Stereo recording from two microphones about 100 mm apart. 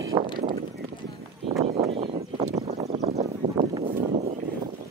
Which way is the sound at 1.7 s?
80° right.